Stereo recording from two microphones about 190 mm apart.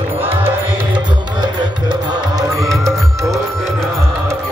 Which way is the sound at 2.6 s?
Centre (ahead or behind).